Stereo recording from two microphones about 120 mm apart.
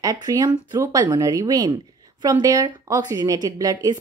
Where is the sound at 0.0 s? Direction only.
30° right (ahead or behind).